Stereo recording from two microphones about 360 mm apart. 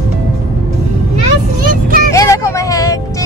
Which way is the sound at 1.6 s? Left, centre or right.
Right.